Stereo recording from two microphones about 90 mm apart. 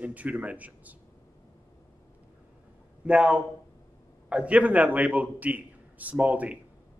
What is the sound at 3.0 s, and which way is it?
Speech, 15° right (ahead or behind).